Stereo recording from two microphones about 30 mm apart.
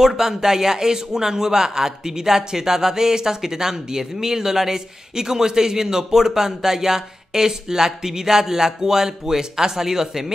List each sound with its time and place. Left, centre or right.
0.0 s a man's voice: centre